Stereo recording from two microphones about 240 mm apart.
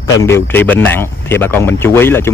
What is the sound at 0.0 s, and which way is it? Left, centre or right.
Speech, centre.